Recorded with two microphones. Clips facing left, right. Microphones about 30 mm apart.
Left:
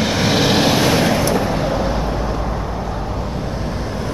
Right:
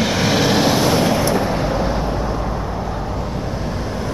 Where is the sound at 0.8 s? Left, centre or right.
Left.